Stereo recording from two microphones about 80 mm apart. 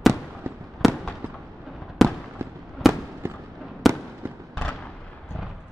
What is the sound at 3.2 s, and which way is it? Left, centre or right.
Fireworks, right.